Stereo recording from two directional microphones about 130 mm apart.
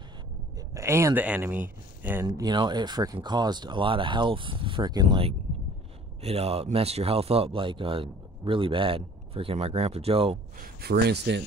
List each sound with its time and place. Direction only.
0.7 s speech: 20° right (ahead or behind)
2.2 s speech: 30° right (ahead or behind)
6.2 s a man's voice: 50° right (ahead or behind)